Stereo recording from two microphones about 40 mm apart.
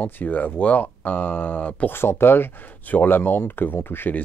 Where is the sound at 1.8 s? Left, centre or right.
Left.